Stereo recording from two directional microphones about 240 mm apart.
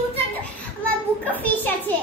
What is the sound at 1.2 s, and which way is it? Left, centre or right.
Speech, centre.